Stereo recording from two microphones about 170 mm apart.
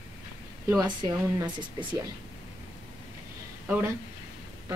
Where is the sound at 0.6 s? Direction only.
20° right (ahead or behind).